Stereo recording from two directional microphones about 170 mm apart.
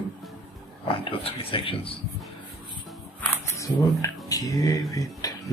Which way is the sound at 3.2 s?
15° left (ahead or behind).